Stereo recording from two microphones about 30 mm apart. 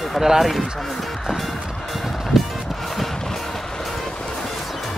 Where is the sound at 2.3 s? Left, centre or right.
Centre.